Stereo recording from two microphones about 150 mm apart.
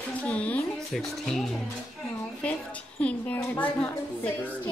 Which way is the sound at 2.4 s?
10° left (ahead or behind).